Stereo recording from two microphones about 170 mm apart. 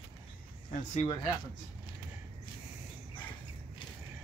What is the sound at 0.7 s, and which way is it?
Speech, 40° left (ahead or behind).